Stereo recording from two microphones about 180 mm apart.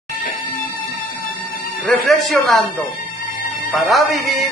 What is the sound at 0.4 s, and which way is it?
Music, 50° left (ahead or behind).